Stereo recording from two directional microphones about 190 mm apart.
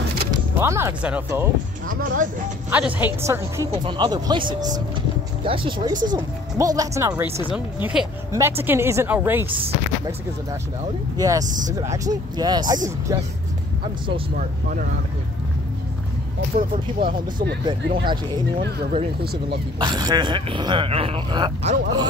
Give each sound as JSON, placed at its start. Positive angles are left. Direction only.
{"t": 0.6, "sound": "a woman's voice", "side_deg": -15}
{"t": 1.9, "sound": "speech", "side_deg": -45}
{"t": 2.7, "sound": "a woman's voice", "side_deg": -10}
{"t": 3.7, "sound": "a woman's voice", "side_deg": -25}
{"t": 9.5, "sound": "speech", "side_deg": -30}
{"t": 11.1, "sound": "speech", "side_deg": -20}
{"t": 11.4, "sound": "speech", "side_deg": -40}
{"t": 11.7, "sound": "a woman's voice", "side_deg": -15}
{"t": 16.5, "sound": "speech", "side_deg": -45}
{"t": 17.9, "sound": "speech", "side_deg": -25}
{"t": 19.8, "sound": "speech", "side_deg": -20}